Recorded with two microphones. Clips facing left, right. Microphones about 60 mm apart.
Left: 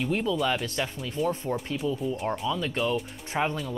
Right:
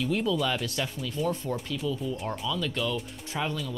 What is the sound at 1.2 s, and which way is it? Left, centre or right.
Speech, centre.